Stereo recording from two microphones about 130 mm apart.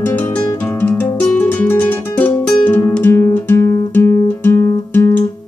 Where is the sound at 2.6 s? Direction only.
10° left (ahead or behind).